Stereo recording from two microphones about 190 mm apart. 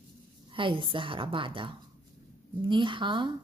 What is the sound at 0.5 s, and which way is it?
Speech, 25° right (ahead or behind).